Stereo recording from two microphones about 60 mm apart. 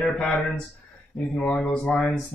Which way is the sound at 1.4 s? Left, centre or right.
Left.